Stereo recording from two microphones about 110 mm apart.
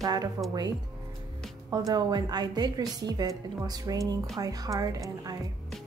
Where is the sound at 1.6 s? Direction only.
35° right (ahead or behind).